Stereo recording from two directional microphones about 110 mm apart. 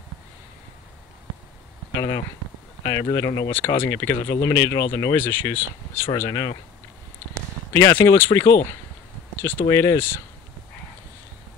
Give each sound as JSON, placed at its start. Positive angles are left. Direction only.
{"t": 2.0, "sound": "speech", "side_deg": 30}
{"t": 3.4, "sound": "speech", "side_deg": 20}
{"t": 6.1, "sound": "speech", "side_deg": 30}
{"t": 7.7, "sound": "speech", "side_deg": 30}